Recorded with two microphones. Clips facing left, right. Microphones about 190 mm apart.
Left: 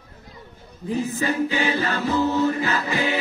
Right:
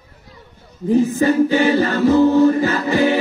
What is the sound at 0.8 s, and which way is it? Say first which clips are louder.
A capella: right 9 dB; 45° right (ahead or behind).